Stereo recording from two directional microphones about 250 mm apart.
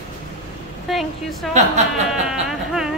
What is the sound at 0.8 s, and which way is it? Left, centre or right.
Speech, centre.